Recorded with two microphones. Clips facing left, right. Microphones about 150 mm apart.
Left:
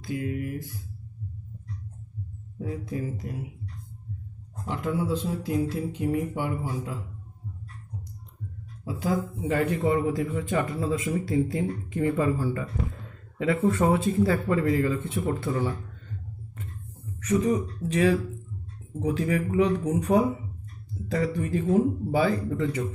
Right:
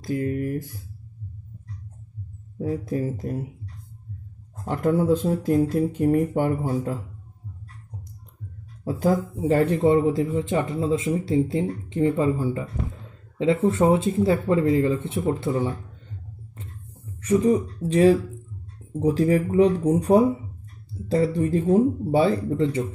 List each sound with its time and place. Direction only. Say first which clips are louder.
0.0 s speech: right 5 dB; 40° right (ahead or behind)
2.6 s speech: right 6 dB; 40° right (ahead or behind)
4.6 s speech: right 7 dB; 45° right (ahead or behind)
8.8 s speech: right 5 dB; 45° right (ahead or behind); by 12.6 s 20° right (ahead or behind)
13.7 s speech: right 2 dB; 20° right (ahead or behind)
17.2 s speech: right 4 dB; 30° right (ahead or behind)